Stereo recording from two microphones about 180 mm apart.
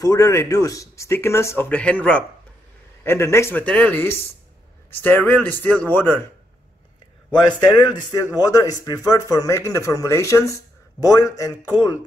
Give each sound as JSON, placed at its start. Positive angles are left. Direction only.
{"t": 0.0, "sound": "speech", "side_deg": 20}
{"t": 7.6, "sound": "speech", "side_deg": 25}